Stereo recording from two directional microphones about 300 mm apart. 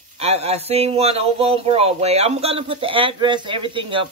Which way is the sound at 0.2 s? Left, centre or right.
Right.